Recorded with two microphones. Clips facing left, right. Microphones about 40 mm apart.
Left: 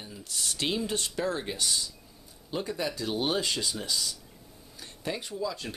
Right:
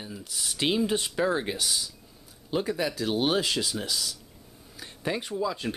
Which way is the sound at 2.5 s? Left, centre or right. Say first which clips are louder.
Right 5 dB; centre.